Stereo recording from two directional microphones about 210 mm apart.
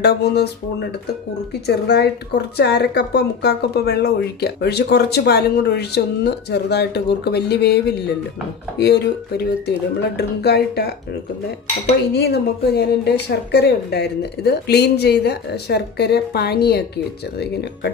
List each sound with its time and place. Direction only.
0.0 s a woman's voice: 50° left (ahead or behind)
12.1 s a woman's voice: 50° left (ahead or behind)